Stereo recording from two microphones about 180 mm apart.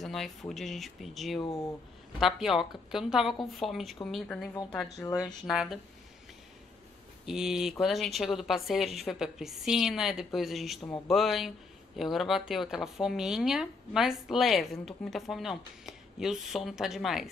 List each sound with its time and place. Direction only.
0.0 s speech: centre (ahead or behind)
4.9 s speech: 20° left (ahead or behind)
5.5 s speech: 5° right (ahead or behind)
7.2 s speech: 5° right (ahead or behind)